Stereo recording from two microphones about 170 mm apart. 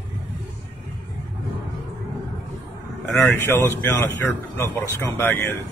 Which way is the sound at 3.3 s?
15° left (ahead or behind).